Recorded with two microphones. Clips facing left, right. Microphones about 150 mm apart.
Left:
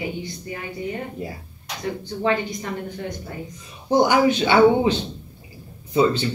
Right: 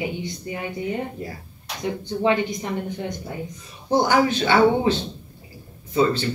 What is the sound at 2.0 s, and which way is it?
Speech, 20° right (ahead or behind).